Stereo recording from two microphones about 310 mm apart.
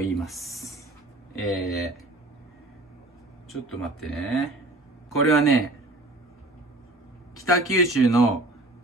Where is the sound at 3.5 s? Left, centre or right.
Centre.